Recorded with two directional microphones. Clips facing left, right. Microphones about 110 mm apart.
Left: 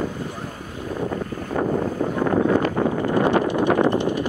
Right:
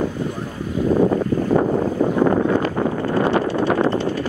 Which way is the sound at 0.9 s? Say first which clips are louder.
Right 8 dB; 55° right (ahead or behind).